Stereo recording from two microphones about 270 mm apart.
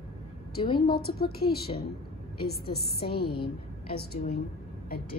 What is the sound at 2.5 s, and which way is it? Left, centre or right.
Speech, left.